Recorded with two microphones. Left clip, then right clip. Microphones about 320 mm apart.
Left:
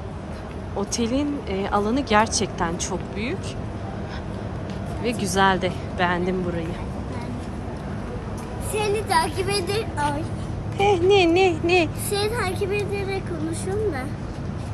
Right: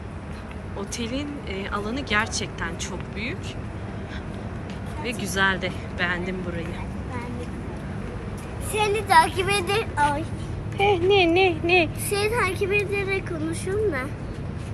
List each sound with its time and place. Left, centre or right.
0.7 s speech: centre
5.0 s speech: centre
8.7 s a woman's voice: centre